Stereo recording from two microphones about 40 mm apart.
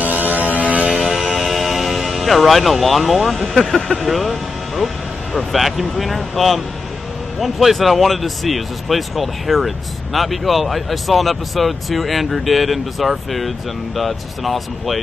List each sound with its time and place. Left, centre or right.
0.0 s vehicle: right
1.3 s music: centre
3.9 s speech: centre
5.5 s speech: centre